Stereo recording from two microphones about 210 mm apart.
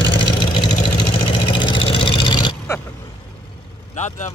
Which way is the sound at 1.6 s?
25° left (ahead or behind).